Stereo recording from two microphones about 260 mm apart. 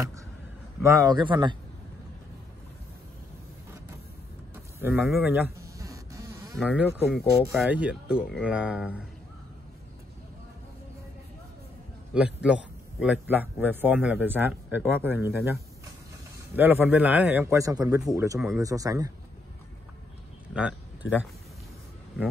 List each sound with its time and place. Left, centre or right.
0.8 s a man's voice: centre
4.8 s bee: centre
7.5 s speech: centre
12.1 s a man's voice: centre
20.5 s speech: centre